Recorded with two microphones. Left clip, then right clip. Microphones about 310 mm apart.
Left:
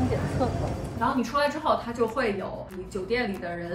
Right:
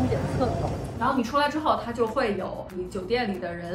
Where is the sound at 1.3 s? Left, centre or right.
Centre.